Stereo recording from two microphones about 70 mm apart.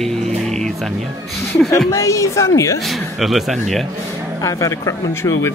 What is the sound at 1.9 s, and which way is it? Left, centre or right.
Speech, left.